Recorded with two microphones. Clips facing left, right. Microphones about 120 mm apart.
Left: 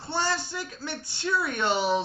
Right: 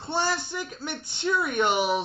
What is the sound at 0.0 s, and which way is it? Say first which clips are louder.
A man's voice: right 1 dB; 20° right (ahead or behind).